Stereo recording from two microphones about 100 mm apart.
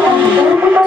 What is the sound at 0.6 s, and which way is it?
Music, 20° right (ahead or behind).